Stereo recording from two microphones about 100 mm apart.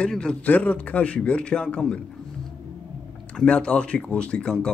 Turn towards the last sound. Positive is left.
turn(degrees=10)  # may be behind; listen again after turning